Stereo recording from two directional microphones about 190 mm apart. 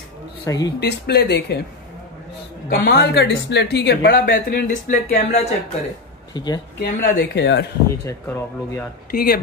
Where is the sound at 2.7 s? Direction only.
50° left (ahead or behind); by 5.5 s 35° left (ahead or behind).